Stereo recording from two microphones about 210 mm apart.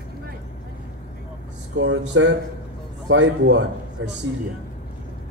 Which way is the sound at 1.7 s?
60° right (ahead or behind).